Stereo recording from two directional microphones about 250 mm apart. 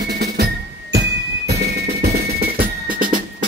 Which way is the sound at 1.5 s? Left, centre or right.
Right.